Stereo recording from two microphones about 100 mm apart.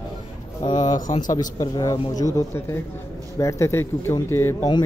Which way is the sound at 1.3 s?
35° left (ahead or behind).